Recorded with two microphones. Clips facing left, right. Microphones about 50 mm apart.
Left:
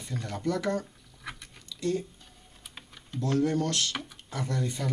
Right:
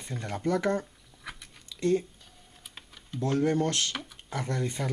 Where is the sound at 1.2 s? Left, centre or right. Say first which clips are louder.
Left 1 dB; centre.